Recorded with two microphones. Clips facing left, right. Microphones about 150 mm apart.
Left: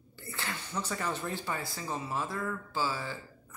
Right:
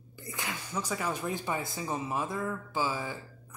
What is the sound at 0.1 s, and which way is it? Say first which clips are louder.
Speech: right 1 dB; 15° right (ahead or behind).